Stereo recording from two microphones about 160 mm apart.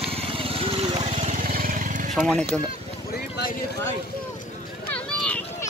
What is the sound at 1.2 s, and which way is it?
Vehicle, 60° right (ahead or behind).